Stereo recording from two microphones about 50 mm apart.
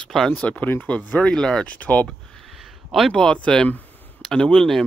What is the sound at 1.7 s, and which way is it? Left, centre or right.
Speech, left.